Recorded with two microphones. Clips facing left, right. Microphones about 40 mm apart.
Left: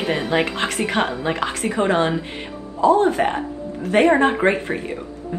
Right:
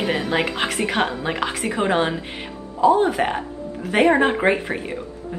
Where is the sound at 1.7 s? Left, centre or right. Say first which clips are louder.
Left 2 dB; centre.